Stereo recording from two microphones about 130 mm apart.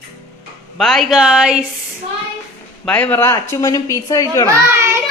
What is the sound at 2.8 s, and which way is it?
A woman's voice, 10° left (ahead or behind).